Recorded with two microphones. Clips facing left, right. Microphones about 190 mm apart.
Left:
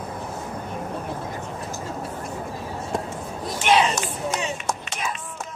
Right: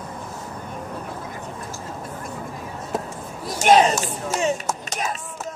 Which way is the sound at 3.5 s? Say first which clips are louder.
Right 4 dB; 45° right (ahead or behind).